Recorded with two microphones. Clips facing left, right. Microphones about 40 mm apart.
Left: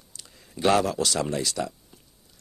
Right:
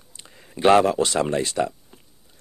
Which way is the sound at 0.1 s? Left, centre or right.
Right.